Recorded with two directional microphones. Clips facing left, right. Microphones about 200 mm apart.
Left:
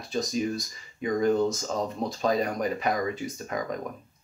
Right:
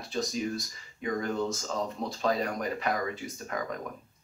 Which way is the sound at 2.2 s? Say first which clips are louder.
Left 3 dB; 15° left (ahead or behind).